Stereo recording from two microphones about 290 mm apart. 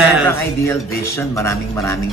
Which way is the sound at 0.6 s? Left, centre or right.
Centre.